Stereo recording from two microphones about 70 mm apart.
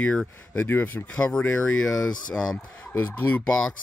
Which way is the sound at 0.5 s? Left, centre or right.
Left.